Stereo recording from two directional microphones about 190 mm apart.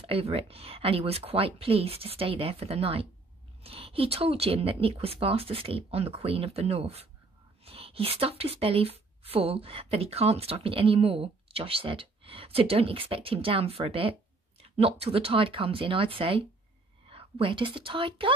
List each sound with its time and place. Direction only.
0.0 s a woman's voice: 30° right (ahead or behind)